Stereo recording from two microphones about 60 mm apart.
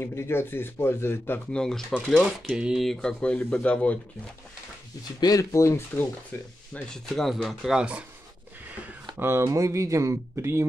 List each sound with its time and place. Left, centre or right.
0.0 s speech: left
1.5 s speech: centre
2.5 s speech: centre
2.8 s speech: centre
5.3 s speech: left
6.3 s speech: left
6.9 s speech: centre
7.4 s speech: centre
9.2 s speech: right